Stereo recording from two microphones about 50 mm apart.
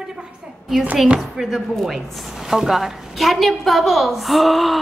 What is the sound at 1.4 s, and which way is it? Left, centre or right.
A woman's voice, centre.